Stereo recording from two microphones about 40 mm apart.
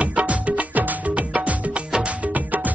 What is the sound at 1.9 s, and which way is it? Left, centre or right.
Music, right.